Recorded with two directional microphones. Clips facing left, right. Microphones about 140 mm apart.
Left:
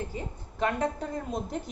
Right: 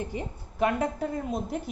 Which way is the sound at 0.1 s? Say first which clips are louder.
Right 3 dB; 10° right (ahead or behind).